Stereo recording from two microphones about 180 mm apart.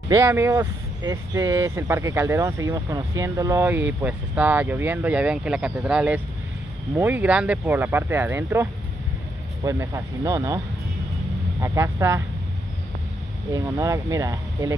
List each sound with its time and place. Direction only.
0.1 s speech: 15° right (ahead or behind)
11.6 s speech: 15° right (ahead or behind)
13.5 s speech: 20° right (ahead or behind)